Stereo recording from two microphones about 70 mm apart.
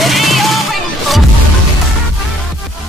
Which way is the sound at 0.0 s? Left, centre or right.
Centre.